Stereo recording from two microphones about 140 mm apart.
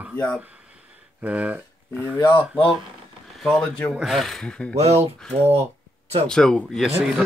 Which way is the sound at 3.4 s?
5° left (ahead or behind).